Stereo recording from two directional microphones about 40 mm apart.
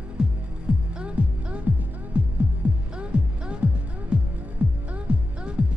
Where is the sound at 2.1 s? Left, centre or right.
Right.